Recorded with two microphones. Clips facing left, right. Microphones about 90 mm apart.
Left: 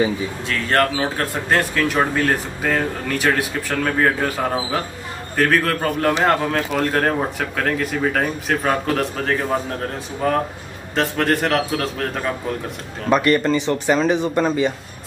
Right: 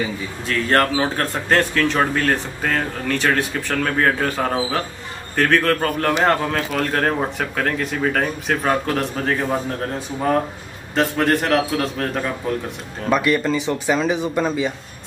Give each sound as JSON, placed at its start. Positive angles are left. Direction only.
{"t": 0.5, "sound": "a man's voice", "side_deg": 0}